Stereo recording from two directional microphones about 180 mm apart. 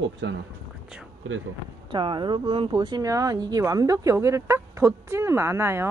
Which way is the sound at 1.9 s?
25° right (ahead or behind).